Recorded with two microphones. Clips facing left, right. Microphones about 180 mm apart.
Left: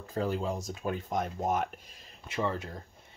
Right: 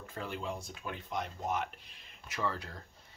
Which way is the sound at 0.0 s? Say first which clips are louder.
Left 8 dB; 40° left (ahead or behind).